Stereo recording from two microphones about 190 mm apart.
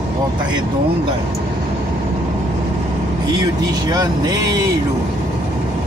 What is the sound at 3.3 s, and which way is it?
Speech, 20° right (ahead or behind).